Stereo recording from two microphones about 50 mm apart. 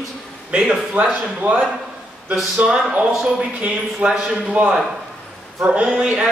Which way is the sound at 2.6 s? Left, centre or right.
Centre.